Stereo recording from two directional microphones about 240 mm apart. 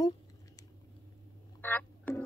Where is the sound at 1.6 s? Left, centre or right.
Centre.